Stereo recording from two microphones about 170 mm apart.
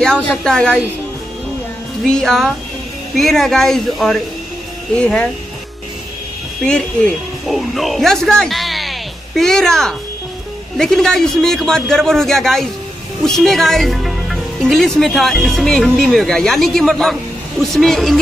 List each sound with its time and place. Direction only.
0.0 s speech: 5° left (ahead or behind)
2.0 s speech: 5° left (ahead or behind)
7.4 s speech: centre (ahead or behind)